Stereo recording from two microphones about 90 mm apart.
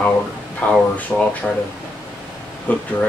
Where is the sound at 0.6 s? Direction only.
15° left (ahead or behind).